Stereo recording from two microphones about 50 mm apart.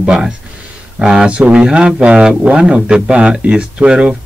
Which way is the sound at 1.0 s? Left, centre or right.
Centre.